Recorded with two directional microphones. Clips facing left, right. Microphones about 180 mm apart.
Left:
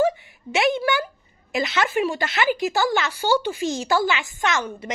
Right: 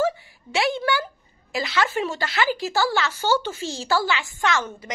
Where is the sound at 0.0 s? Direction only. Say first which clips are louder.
Left 3 dB; 20° left (ahead or behind).